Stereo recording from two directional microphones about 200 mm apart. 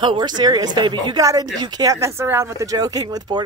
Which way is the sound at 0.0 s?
25° right (ahead or behind).